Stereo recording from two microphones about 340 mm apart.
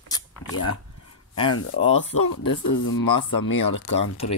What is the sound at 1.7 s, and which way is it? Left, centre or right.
Speech, centre.